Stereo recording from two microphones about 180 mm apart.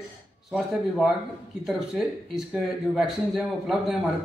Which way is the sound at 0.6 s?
Centre (ahead or behind).